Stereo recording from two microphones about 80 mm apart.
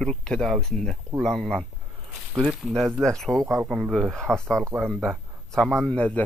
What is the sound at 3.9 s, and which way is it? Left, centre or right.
Speech, centre.